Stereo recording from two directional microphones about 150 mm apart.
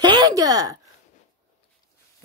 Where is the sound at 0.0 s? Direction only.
30° right (ahead or behind).